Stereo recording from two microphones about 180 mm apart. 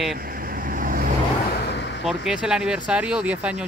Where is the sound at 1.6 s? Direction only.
70° left (ahead or behind).